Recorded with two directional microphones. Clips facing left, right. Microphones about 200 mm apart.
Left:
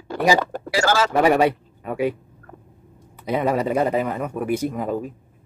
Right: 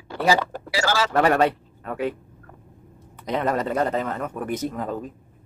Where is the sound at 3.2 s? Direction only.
10° left (ahead or behind).